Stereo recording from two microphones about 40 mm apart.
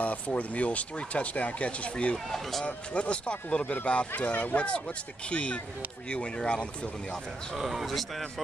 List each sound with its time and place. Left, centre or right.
0.0 s speech: left
2.1 s speech: centre
2.6 s speech: left
7.5 s speech: centre